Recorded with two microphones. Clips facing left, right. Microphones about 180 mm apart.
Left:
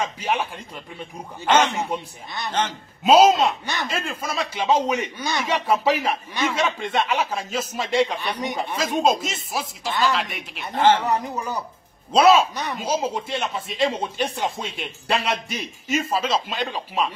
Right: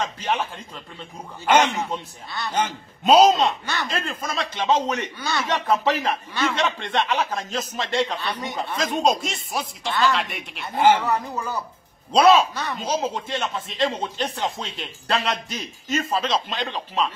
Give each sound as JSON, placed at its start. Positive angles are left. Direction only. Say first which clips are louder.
{"t": 0.0, "sound": "a man's voice", "louder": "left 1 dB", "side_deg": 10}
{"t": 1.4, "sound": "a man's voice", "louder": "even", "side_deg": -15}
{"t": 1.8, "sound": "a man's voice", "louder": "left 1 dB", "side_deg": 15}
{"t": 3.0, "sound": "a man's voice", "louder": "even", "side_deg": 5}
{"t": 10.7, "sound": "a man's voice", "louder": "even", "side_deg": -10}
{"t": 11.0, "sound": "a man's voice", "louder": "left 1 dB", "side_deg": 15}
{"t": 12.1, "sound": "a man's voice", "louder": "even", "side_deg": 5}